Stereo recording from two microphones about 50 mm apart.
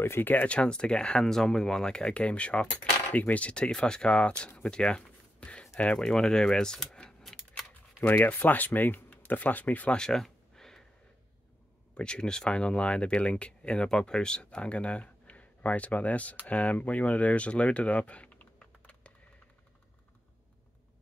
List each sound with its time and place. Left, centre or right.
0.0 s speech: left
0.3 s speech: left
0.6 s speech: centre
4.6 s a sound: centre
5.8 s speech: centre
7.0 s a sound: centre
8.1 s speech: left
9.9 s a sound: centre
11.9 s speech: centre